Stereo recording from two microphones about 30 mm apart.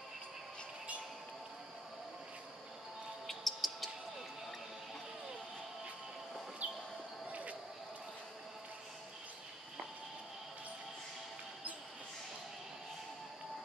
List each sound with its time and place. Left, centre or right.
3.3 s music: centre
6.6 s a sound: right
7.2 s basketball bounce: right